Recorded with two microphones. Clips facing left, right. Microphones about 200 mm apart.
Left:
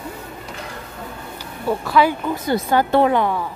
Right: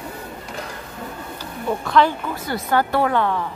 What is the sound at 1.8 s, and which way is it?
Speech, 5° left (ahead or behind).